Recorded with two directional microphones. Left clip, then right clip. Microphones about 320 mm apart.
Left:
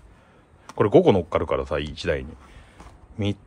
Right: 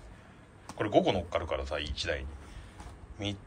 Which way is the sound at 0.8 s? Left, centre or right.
Centre.